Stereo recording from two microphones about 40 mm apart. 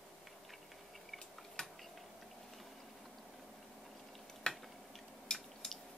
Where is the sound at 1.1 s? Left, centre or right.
Left.